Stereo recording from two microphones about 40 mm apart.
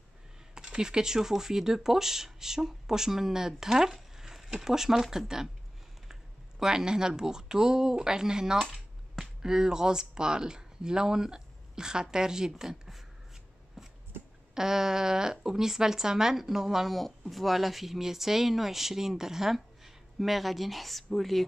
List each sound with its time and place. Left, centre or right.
0.6 s speech: centre
6.6 s speech: centre
13.8 s a sound: centre
14.5 s speech: centre